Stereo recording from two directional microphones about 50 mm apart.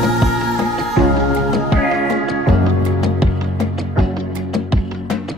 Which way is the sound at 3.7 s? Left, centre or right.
Centre.